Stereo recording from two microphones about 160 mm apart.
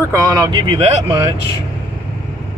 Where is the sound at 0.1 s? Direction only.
20° right (ahead or behind).